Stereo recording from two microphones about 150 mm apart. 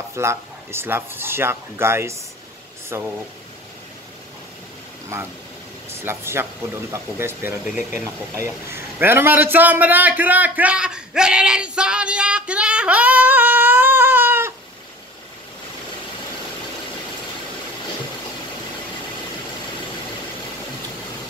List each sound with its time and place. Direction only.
0.1 s speech: 15° right (ahead or behind)
5.1 s speech: 20° right (ahead or behind)